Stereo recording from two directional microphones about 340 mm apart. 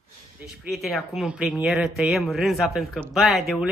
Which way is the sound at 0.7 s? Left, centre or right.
Centre.